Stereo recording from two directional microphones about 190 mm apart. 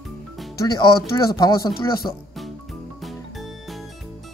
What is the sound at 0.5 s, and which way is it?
Speech, 25° left (ahead or behind).